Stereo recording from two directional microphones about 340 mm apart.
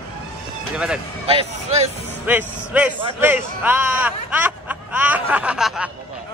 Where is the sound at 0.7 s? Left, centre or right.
Centre.